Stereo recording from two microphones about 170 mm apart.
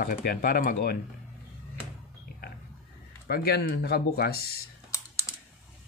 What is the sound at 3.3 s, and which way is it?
Speech, 65° left (ahead or behind).